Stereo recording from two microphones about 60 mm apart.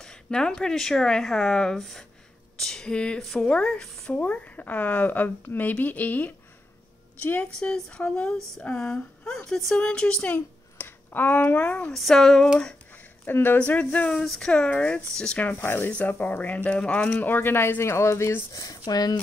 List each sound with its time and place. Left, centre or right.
0.0 s a woman's voice: centre; by 6.3 s left
7.5 s speech: centre
11.9 s speech: centre
12.9 s a sound: left
13.6 s a woman's voice: left
14.1 s speech: centre
14.5 s speech: centre
15.5 s speech: left
15.9 s a woman's voice: left
17.2 s speech: left
18.5 s speech: left
18.9 s speech: left